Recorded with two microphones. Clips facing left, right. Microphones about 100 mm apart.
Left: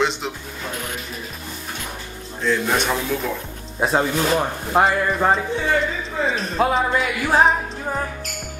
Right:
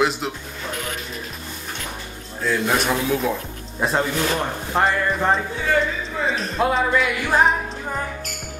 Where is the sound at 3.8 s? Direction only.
10° left (ahead or behind).